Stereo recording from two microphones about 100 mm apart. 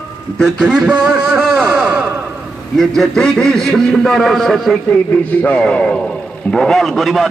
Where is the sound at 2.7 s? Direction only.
5° left (ahead or behind).